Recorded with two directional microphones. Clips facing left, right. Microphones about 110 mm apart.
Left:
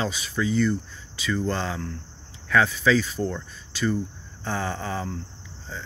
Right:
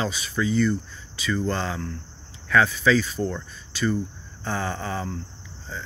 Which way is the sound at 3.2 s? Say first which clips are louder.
Right 1 dB; centre (ahead or behind).